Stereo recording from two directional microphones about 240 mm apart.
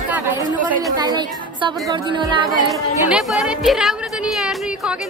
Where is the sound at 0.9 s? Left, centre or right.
Centre.